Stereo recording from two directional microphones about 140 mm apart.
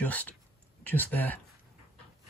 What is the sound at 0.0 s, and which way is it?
Speech, 10° left (ahead or behind).